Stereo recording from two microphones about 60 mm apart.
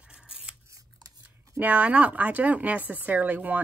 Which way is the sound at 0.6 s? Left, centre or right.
Right.